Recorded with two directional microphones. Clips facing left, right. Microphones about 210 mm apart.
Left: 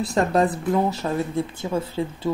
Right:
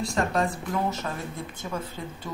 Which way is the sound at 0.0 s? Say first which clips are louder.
Left 6 dB; 35° left (ahead or behind).